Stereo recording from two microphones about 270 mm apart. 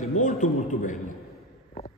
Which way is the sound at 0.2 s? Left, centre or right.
Left.